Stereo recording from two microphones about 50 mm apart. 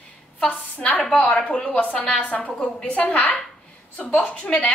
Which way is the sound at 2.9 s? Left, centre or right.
Left.